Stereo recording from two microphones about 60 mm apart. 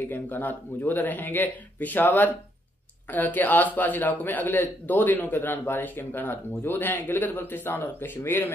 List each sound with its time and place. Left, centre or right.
0.0 s a man's voice: left